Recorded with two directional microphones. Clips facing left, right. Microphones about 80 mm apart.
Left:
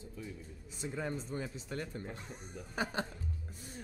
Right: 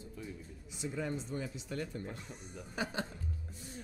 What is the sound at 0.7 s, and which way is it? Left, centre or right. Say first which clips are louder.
Speech: right 1 dB; left.